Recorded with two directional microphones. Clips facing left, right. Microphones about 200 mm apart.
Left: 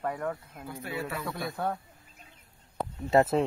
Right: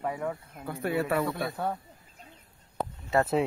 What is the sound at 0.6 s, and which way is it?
Speech, 60° right (ahead or behind).